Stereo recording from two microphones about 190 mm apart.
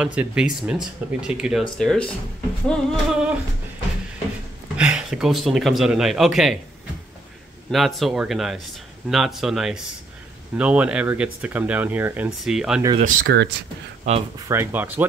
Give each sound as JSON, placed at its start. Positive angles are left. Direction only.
{"t": 0.0, "sound": "speech", "side_deg": -5}
{"t": 4.7, "sound": "speech", "side_deg": -5}
{"t": 7.7, "sound": "speech", "side_deg": 0}
{"t": 13.0, "sound": "speech", "side_deg": -55}
{"t": 14.1, "sound": "speech", "side_deg": -35}
{"t": 14.5, "sound": "speech", "side_deg": -10}